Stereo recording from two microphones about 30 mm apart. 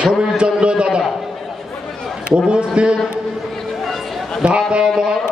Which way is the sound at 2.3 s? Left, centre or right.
Right.